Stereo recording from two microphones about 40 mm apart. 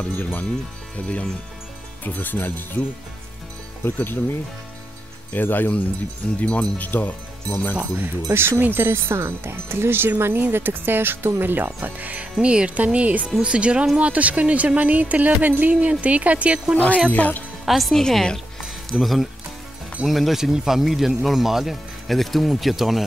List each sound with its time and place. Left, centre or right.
0.2 s speech: left
0.9 s speech: left
2.0 s speech: left
3.8 s speech: left
5.3 s speech: left
6.4 s speech: left
6.9 s speech: left
8.3 s speech: right
11.5 s speech: right
12.4 s speech: right
15.7 s speech: right
16.7 s speech: left
17.6 s speech: centre
22.0 s speech: centre